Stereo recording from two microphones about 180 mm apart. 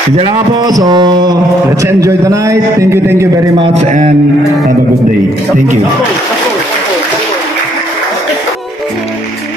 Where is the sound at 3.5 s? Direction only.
30° right (ahead or behind).